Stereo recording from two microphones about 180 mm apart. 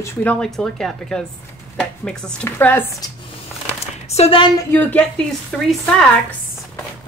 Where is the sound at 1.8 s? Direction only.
5° left (ahead or behind).